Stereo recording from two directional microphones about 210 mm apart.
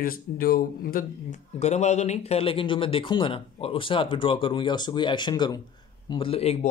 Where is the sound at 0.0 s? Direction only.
45° left (ahead or behind).